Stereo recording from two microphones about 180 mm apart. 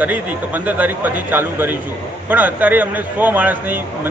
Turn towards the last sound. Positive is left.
turn(degrees=-10)  # may be behind; listen again after turning